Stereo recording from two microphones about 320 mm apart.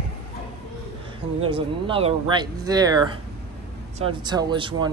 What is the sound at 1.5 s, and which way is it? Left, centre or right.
Speech, centre.